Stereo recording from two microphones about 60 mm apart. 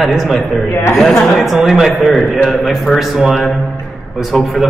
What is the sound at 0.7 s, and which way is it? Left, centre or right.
Speech, left.